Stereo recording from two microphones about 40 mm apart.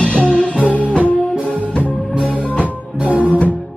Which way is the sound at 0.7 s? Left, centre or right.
Right.